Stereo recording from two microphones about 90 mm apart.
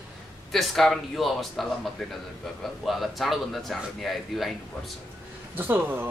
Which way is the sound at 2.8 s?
Centre (ahead or behind).